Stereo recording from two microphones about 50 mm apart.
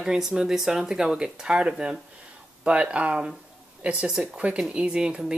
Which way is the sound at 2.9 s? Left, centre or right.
Right.